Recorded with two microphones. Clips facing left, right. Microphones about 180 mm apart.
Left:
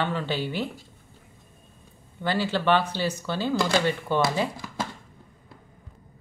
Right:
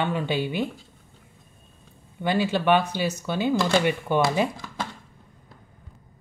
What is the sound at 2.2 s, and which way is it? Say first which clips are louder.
Speech: right 2 dB; 15° right (ahead or behind).